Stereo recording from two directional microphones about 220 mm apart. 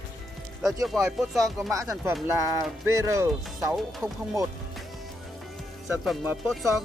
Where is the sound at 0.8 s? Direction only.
Centre (ahead or behind).